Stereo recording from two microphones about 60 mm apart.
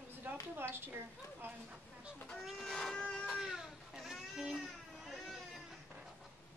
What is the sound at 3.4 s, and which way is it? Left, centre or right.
Baby cry, centre.